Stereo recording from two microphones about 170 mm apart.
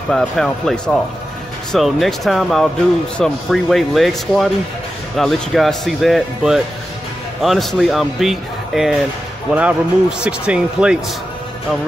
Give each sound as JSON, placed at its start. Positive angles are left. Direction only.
{"t": 0.1, "sound": "speech", "side_deg": 5}